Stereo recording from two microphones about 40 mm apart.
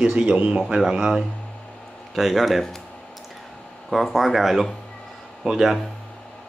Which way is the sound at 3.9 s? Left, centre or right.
Centre.